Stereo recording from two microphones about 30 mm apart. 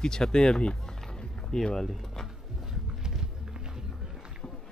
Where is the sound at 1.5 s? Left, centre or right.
Centre.